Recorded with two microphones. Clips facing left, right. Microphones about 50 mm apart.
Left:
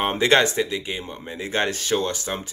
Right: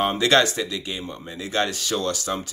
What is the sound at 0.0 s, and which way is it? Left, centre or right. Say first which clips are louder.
Speech: even; left.